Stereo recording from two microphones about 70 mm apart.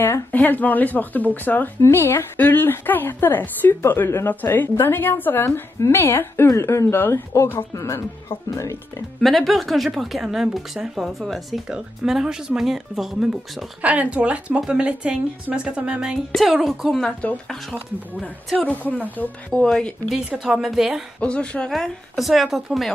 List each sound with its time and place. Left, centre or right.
0.3 s a woman's voice: left
5.4 s a woman's voice: left
9.2 s a woman's voice: centre
13.7 s a woman's voice: centre
17.0 s speech: centre
18.6 s speech: left
19.6 s a woman's voice: centre
20.6 s a woman's voice: centre
21.2 s a woman's voice: centre